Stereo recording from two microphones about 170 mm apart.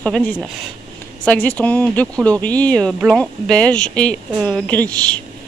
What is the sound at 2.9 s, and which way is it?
Speech, 5° right (ahead or behind).